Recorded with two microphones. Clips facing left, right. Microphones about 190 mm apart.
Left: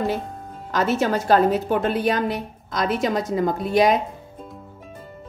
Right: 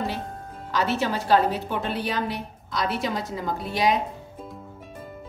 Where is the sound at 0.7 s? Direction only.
45° left (ahead or behind).